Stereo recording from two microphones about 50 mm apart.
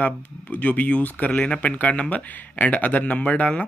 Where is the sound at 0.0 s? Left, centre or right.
Left.